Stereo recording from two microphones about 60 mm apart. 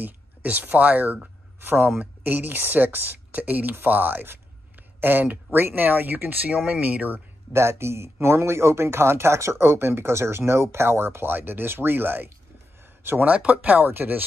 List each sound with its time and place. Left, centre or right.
0.0 s speech: right
7.5 s speech: right